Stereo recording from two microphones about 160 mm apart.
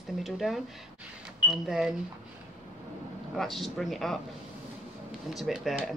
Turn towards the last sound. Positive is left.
turn(degrees=0)  # may be behind; listen again after turning